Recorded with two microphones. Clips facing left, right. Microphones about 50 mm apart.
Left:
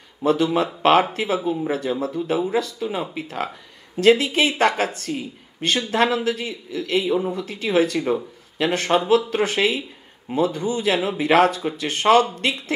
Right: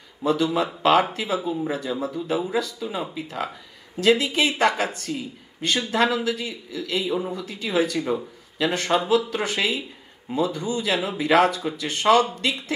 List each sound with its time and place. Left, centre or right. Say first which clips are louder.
0.2 s speech: left 3 dB; left